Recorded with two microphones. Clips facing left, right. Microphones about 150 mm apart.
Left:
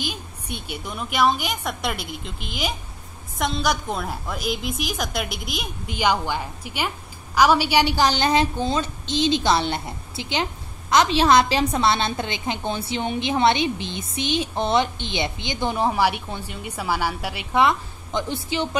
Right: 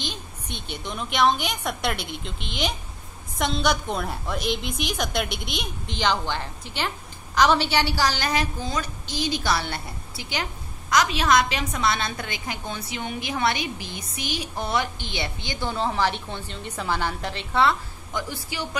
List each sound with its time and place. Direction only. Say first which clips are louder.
0.0 s a woman's voice: left 3 dB; 10° left (ahead or behind)